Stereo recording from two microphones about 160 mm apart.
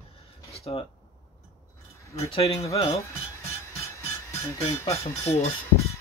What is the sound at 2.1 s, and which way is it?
Speech, 35° left (ahead or behind).